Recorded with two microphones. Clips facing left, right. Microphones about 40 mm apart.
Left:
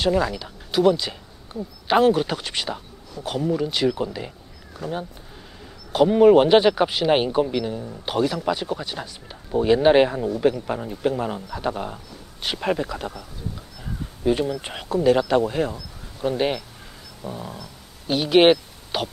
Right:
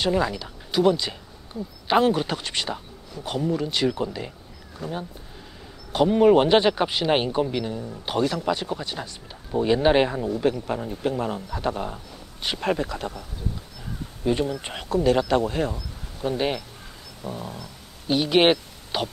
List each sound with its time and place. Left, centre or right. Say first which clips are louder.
0.0 s a man's voice: left 2 dB; centre
17.2 s a sound: even; centre
18.0 s speech: left 3 dB; centre